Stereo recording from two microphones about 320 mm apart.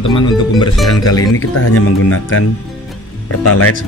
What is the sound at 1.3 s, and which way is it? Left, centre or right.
Speech, left.